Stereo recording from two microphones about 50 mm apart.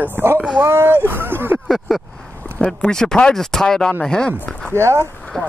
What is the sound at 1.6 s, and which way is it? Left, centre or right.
Speech, centre.